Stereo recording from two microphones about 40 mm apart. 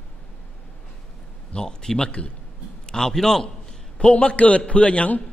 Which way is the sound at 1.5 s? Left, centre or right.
Left.